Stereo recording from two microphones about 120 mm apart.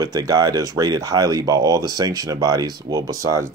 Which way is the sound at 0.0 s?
30° right (ahead or behind).